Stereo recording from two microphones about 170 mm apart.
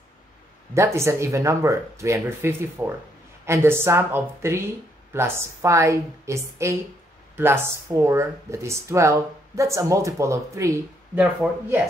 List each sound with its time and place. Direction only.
0.7 s speech: 15° right (ahead or behind)